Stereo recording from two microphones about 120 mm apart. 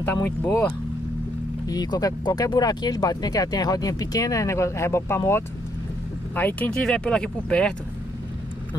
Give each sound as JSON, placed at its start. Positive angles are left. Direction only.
{"t": 0.0, "sound": "speech", "side_deg": 15}
{"t": 1.7, "sound": "speech", "side_deg": 30}